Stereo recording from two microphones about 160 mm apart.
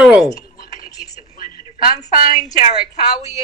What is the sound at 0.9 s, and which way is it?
Television, 20° left (ahead or behind).